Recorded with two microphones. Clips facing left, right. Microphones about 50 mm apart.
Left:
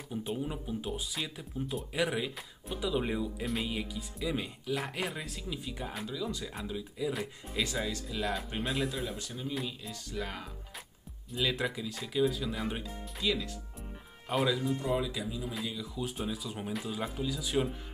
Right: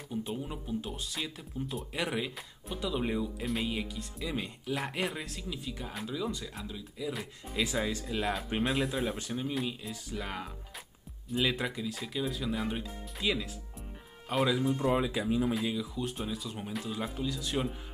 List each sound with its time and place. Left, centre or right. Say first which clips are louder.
0.1 s speech: left 1 dB; centre
7.6 s speech: right 3 dB; centre
8.6 s speech: right 3 dB; centre
9.2 s speech: right 5 dB; right
9.8 s speech: even; centre
13.2 s speech: even; centre
14.3 s speech: right 1 dB; centre
14.8 s speech: right 3 dB; right
15.2 s speech: right 9 dB; right
15.8 s speech: right 1 dB; centre